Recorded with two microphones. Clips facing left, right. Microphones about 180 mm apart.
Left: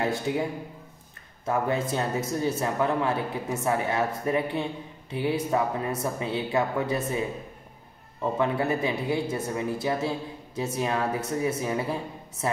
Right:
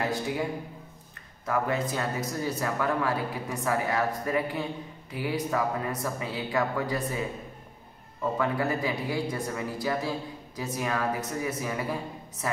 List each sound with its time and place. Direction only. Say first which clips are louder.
0.3 s speech: left 3 dB; 25° left (ahead or behind)